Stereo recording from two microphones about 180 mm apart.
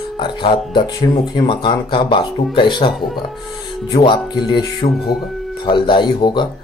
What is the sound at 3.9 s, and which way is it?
Speech, 25° left (ahead or behind).